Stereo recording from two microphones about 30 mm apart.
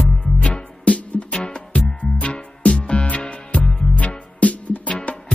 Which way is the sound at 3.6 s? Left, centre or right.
Left.